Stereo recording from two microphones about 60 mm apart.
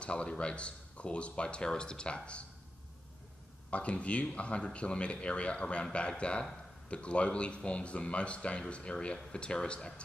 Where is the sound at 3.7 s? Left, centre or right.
Left.